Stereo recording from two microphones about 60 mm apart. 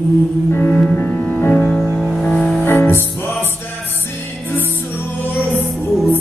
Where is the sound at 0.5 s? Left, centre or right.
Left.